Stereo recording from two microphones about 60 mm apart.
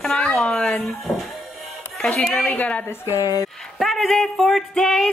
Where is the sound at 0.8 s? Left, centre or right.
Centre.